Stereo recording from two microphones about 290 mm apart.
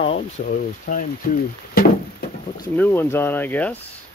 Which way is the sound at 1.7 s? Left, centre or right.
Left.